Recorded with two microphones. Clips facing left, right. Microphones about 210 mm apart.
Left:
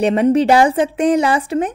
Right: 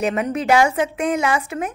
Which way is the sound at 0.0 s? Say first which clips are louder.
Left 8 dB; 30° left (ahead or behind).